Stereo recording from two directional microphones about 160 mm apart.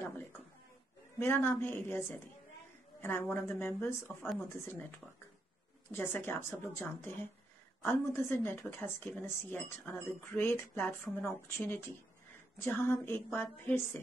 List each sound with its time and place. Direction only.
1.2 s a woman's voice: 15° left (ahead or behind)
5.9 s speech: 15° left (ahead or behind)